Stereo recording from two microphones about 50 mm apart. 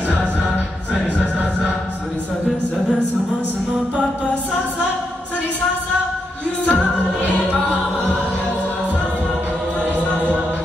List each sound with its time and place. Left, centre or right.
6.6 s music: left